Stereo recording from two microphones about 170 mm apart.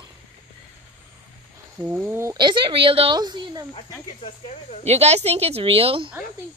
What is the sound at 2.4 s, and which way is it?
Speech, 30° right (ahead or behind).